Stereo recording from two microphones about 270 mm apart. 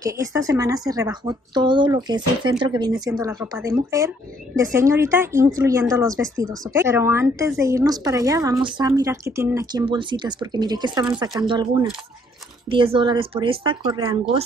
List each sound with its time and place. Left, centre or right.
0.0 s speech: centre